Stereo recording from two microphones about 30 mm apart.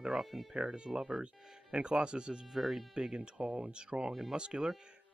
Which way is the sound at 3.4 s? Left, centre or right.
Right.